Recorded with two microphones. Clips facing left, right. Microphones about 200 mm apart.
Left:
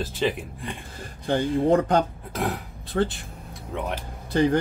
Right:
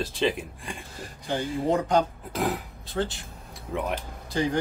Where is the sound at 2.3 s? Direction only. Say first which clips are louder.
Even; centre (ahead or behind).